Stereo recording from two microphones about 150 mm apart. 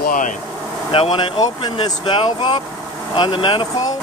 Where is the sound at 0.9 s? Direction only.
35° left (ahead or behind).